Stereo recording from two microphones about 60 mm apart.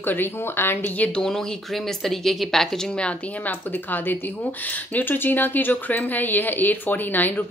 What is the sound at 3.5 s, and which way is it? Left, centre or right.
Speech, left.